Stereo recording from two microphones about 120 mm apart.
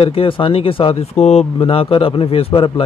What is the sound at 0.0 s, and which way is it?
Speech, 50° left (ahead or behind).